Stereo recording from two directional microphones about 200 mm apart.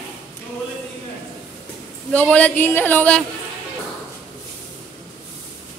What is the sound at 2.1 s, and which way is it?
A man's voice, 5° left (ahead or behind).